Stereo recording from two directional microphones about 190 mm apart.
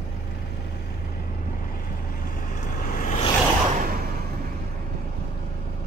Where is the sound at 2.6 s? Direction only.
45° left (ahead or behind).